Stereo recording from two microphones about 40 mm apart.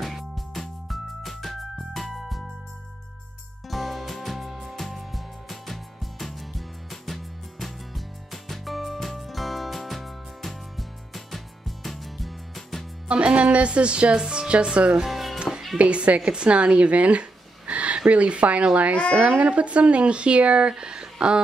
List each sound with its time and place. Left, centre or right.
0.0 s music: centre
3.6 s music: centre
13.1 s a woman's voice: right
15.0 s music: centre
15.8 s a woman's voice: right